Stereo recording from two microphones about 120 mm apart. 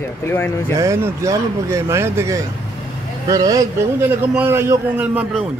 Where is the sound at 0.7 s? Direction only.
20° right (ahead or behind).